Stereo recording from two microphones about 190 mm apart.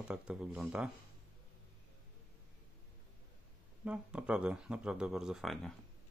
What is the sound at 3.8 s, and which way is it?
Speech, 5° right (ahead or behind).